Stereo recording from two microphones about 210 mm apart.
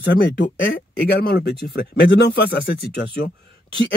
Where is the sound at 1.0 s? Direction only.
50° left (ahead or behind).